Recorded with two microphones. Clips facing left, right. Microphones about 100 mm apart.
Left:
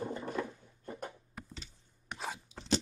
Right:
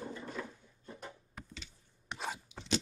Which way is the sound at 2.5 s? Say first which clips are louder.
Even; 35° left (ahead or behind).